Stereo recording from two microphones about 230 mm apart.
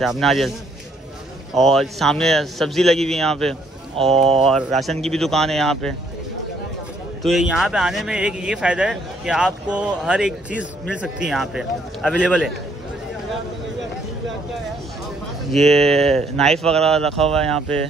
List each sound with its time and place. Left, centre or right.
0.0 s speech: centre
1.5 s speech: centre
4.1 s speech: right
4.4 s speech: centre
7.2 s speech: centre
15.5 s speech: centre